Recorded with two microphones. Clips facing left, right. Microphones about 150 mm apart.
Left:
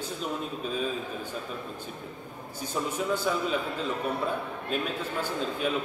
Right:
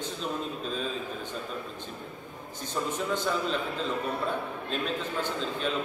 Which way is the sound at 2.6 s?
10° left (ahead or behind).